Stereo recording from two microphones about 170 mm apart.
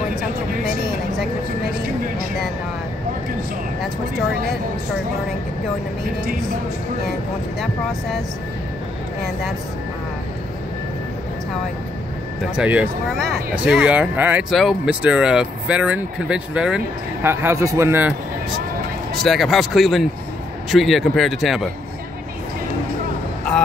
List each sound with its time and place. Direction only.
12.5 s speech: 5° right (ahead or behind)
19.2 s speech: centre (ahead or behind)